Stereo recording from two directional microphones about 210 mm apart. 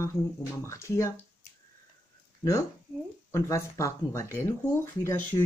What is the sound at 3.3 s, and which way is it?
Speech, 15° left (ahead or behind).